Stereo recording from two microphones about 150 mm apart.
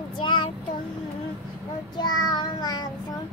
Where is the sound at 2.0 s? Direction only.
30° left (ahead or behind).